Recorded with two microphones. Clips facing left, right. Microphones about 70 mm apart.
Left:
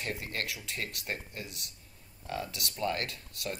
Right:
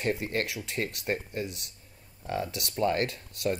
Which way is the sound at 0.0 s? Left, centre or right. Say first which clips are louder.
Right 7 dB; right.